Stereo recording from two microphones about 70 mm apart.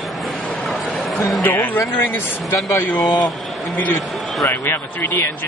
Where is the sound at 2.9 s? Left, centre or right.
Centre.